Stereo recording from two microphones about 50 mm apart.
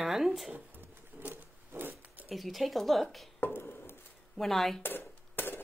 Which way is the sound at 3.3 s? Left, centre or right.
Left.